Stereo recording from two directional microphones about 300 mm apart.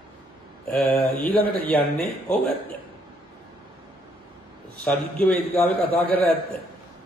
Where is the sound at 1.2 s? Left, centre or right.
Left.